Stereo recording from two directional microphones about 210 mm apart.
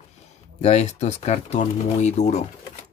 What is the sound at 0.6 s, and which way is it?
Speech, 30° left (ahead or behind).